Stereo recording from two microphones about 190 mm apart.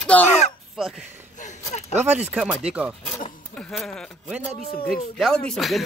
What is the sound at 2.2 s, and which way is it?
Speech, 5° right (ahead or behind).